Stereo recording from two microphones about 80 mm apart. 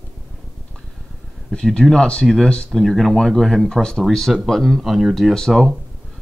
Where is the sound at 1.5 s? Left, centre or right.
Centre.